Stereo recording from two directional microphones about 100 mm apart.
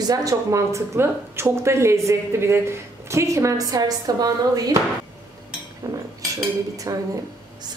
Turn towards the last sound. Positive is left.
turn(degrees=-35)  # may be behind; listen again after turning